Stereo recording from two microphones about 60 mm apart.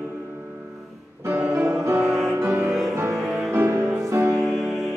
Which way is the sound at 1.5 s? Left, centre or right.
Right.